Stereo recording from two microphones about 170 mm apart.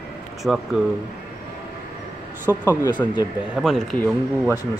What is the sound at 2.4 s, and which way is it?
Speech, 15° right (ahead or behind).